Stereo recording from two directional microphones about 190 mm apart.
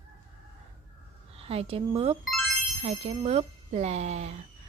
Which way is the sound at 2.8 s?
35° right (ahead or behind).